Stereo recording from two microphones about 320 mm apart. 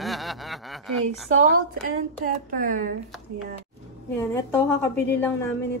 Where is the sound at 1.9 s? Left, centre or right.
Right.